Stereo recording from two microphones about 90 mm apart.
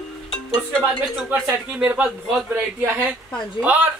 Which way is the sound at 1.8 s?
15° right (ahead or behind).